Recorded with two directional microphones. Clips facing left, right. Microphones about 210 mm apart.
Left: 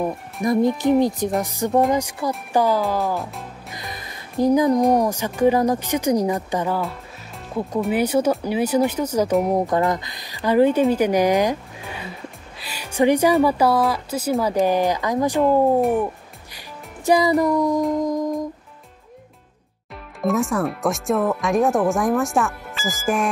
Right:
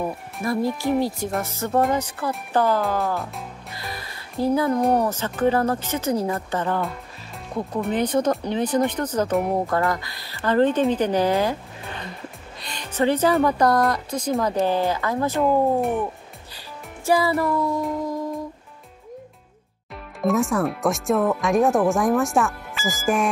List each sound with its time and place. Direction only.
0.0 s speech: 15° left (ahead or behind)
2.8 s speech: centre (ahead or behind)
3.7 s music: 20° left (ahead or behind)
4.9 s speech: 15° left (ahead or behind)
15.4 s speech: centre (ahead or behind)
16.5 s music: 15° left (ahead or behind)
20.2 s speech: centre (ahead or behind)